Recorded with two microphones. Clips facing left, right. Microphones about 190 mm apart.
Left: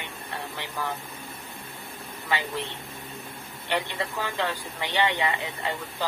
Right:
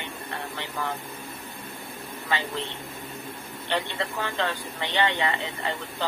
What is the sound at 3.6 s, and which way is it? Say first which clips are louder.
Speech: even; 15° left (ahead or behind).